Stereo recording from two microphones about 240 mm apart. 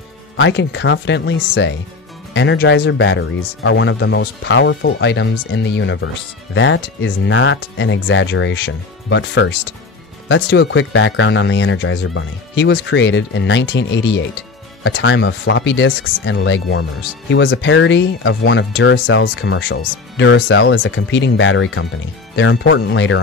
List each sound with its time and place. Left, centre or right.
0.4 s speech: left